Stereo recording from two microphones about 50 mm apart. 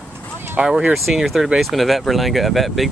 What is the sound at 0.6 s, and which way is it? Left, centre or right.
Speech, right.